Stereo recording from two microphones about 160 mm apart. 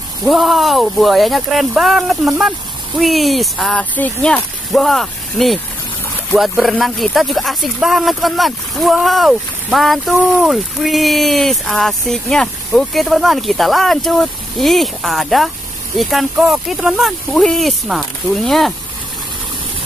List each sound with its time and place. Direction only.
0.2 s speech: centre (ahead or behind)